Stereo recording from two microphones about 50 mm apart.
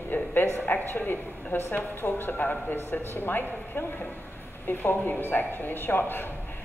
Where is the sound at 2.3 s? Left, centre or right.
Left.